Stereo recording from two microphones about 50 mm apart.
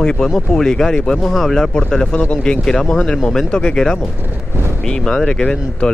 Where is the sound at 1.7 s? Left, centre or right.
Centre.